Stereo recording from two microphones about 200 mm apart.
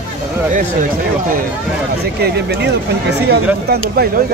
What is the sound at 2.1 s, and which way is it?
Speech, 55° right (ahead or behind).